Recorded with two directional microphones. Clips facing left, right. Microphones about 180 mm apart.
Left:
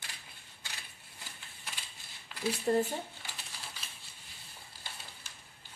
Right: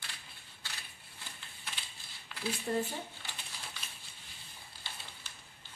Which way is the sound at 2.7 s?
40° left (ahead or behind).